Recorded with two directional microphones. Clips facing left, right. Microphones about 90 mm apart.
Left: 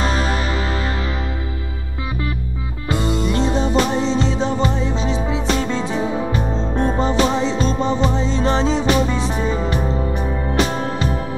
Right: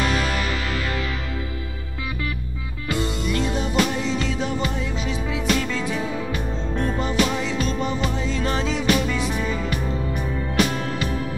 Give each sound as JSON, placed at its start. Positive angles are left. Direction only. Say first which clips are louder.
{"t": 0.0, "sound": "music", "louder": "left 3 dB", "side_deg": 30}
{"t": 2.9, "sound": "music", "louder": "left 5 dB", "side_deg": 25}